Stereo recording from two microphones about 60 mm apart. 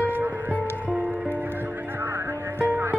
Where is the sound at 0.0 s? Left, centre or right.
Right.